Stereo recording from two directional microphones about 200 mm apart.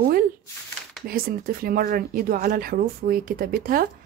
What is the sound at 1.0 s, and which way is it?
Speech, 45° right (ahead or behind).